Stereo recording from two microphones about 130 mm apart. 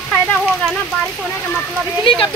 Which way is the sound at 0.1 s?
10° left (ahead or behind).